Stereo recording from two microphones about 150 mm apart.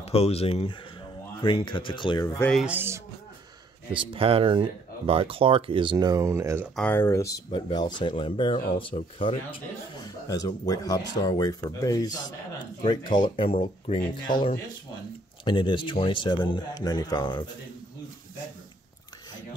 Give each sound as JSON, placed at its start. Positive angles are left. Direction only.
{"t": 0.0, "sound": "a man's voice", "side_deg": 40}
{"t": 2.6, "sound": "speech", "side_deg": -15}
{"t": 3.9, "sound": "speech", "side_deg": -35}
{"t": 6.7, "sound": "a man's voice", "side_deg": 10}
{"t": 10.2, "sound": "a man's voice", "side_deg": 25}